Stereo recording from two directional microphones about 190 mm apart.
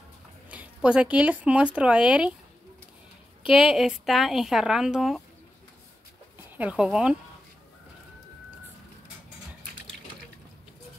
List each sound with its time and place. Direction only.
0.5 s speech: 5° right (ahead or behind)
3.4 s a woman's voice: 5° right (ahead or behind)
6.5 s a woman's voice: 10° right (ahead or behind)